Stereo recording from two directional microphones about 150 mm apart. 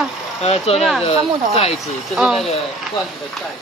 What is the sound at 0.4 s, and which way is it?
Speech, 45° left (ahead or behind).